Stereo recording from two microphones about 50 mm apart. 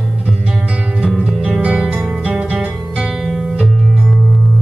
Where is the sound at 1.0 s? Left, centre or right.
Right.